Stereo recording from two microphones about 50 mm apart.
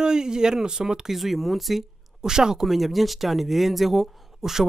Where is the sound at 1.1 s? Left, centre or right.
Centre.